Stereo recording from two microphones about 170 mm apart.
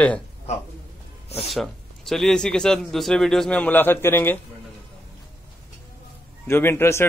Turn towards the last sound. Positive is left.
turn(degrees=15)  # may be behind; listen again after turning